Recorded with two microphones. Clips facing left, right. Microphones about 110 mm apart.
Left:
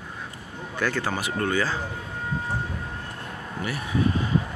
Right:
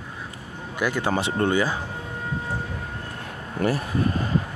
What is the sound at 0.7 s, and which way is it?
Speech, 15° right (ahead or behind).